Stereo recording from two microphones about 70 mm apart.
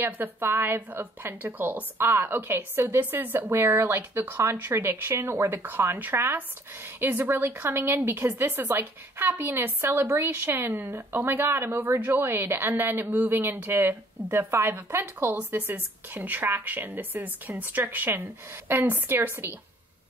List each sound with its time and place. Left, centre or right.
0.0 s a woman's voice: right